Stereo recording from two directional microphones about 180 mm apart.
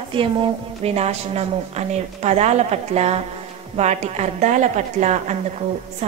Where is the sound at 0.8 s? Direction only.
35° right (ahead or behind).